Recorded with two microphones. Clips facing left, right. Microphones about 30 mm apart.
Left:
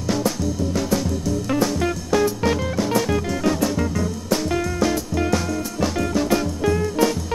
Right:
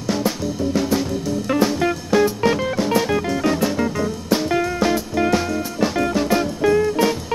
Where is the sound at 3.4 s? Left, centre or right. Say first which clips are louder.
Even; right.